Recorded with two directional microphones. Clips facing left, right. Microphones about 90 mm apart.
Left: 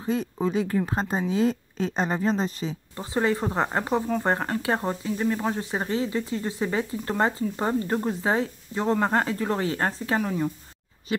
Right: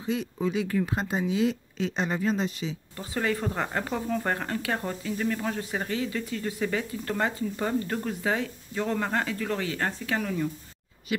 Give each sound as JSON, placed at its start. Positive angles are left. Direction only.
{"t": 0.0, "sound": "speech", "side_deg": 40}